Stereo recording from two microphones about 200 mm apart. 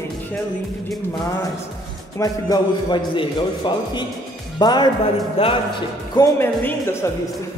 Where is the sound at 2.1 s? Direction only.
20° left (ahead or behind).